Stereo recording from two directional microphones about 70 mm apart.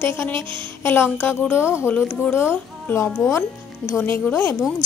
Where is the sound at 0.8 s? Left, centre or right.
Left.